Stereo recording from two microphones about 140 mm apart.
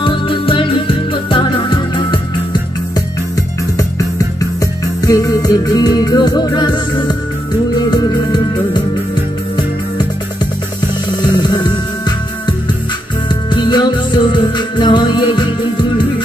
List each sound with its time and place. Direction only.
0.0 s music: 40° left (ahead or behind)
4.6 s music: 25° left (ahead or behind)
11.4 s music: 30° left (ahead or behind)
13.5 s music: 35° left (ahead or behind)